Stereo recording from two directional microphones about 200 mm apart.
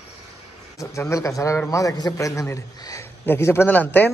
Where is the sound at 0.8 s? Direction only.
15° left (ahead or behind).